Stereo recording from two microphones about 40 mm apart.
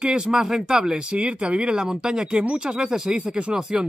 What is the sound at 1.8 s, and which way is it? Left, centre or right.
Speech, centre.